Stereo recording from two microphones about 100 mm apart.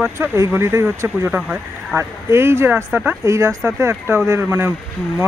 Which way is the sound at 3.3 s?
30° right (ahead or behind).